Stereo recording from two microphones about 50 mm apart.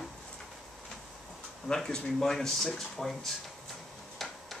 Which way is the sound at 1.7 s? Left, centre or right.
Centre.